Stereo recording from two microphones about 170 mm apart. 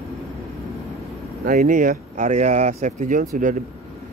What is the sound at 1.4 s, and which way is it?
Speech, 50° right (ahead or behind).